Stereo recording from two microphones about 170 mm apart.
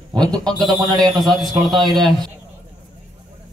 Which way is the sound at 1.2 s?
Centre (ahead or behind).